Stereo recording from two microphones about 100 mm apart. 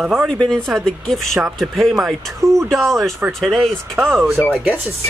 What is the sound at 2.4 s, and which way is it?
Speech, 35° right (ahead or behind).